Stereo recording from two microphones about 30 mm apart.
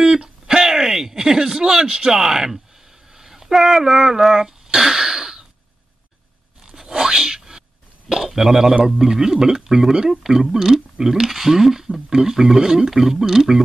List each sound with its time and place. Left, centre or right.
0.0 s a sound: right
3.1 s speech: centre
4.7 s throat clearing: centre
6.6 s a sound: centre
8.3 s speech: centre
12.9 s speech: centre